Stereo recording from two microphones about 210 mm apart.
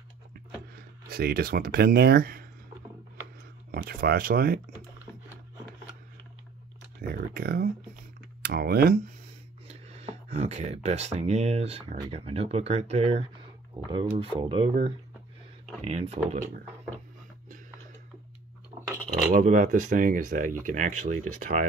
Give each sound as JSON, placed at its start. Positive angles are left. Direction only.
{"t": 1.1, "sound": "speech", "side_deg": -50}
{"t": 3.7, "sound": "speech", "side_deg": -45}
{"t": 7.0, "sound": "computer keyboard", "side_deg": -45}
{"t": 8.4, "sound": "speech", "side_deg": -45}
{"t": 9.7, "sound": "speech", "side_deg": -30}
{"t": 15.8, "sound": "speech", "side_deg": -30}
{"t": 19.3, "sound": "speech", "side_deg": -35}